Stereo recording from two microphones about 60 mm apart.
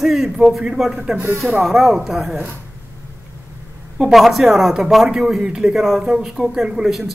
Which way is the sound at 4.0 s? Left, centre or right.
Centre.